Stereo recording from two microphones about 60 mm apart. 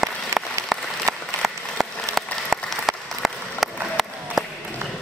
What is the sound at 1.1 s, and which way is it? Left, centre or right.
Applause, right.